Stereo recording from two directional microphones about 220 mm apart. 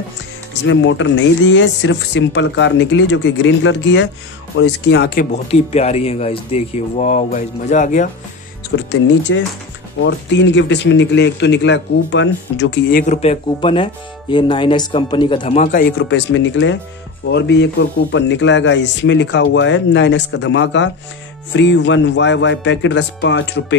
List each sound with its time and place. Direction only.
0.7 s a man's voice: 55° left (ahead or behind)
5.3 s speech: 30° left (ahead or behind)
8.7 s a man's voice: 55° left (ahead or behind)
13.0 s speech: 30° left (ahead or behind)
16.0 s a man's voice: 55° left (ahead or behind)